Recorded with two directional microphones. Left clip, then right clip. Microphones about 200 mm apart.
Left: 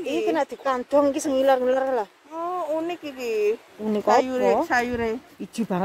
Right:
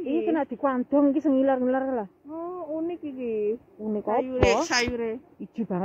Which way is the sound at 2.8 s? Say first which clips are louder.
Left 3 dB; 70° left (ahead or behind).